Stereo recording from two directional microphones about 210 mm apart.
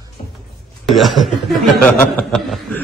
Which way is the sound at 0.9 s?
Centre (ahead or behind).